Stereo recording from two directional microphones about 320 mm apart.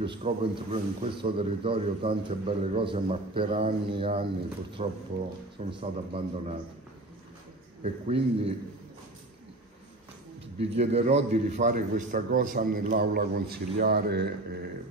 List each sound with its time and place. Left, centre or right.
0.0 s a man's voice: centre
7.8 s a man's voice: centre
10.6 s a man's voice: centre